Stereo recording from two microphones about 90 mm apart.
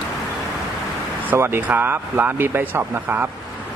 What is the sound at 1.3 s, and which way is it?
Speech, 25° right (ahead or behind).